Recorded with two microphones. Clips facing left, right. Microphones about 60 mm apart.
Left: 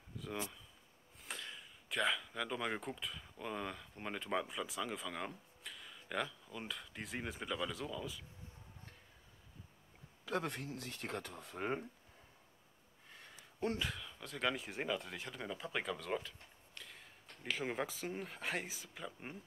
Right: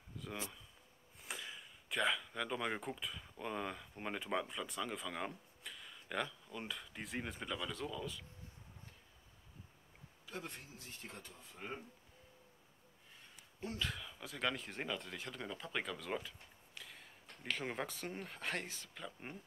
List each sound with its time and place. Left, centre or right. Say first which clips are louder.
0.2 s speech: left 3 dB; centre
10.2 s speech: left 9 dB; left
13.8 s speech: even; centre